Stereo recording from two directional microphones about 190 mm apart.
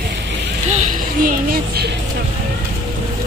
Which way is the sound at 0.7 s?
40° right (ahead or behind).